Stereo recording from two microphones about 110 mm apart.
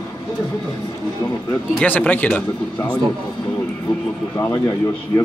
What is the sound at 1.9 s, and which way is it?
Speech, 15° left (ahead or behind).